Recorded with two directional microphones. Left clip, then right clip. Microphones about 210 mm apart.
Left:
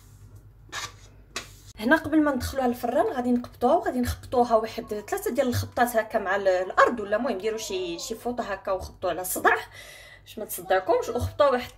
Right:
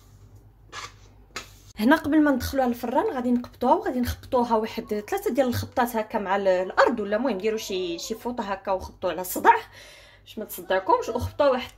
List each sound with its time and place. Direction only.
1.8 s speech: 45° right (ahead or behind); by 11.7 s 25° right (ahead or behind)